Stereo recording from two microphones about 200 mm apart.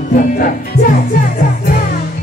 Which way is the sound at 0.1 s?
40° left (ahead or behind).